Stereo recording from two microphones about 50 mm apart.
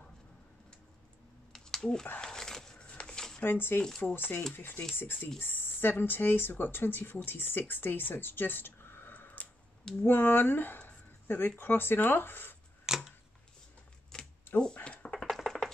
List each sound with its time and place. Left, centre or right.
1.5 s a sound: centre
2.1 s dog: centre
2.9 s a sound: centre
3.4 s speech: left
9.4 s clicking: left
10.0 s speech: left
12.8 s scissors: centre
14.8 s typing: left
15.0 s typing: centre
15.4 s music: centre